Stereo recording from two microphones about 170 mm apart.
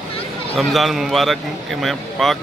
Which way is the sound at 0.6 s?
Centre (ahead or behind).